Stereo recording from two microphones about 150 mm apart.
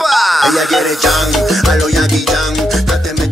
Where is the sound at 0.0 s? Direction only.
Centre (ahead or behind).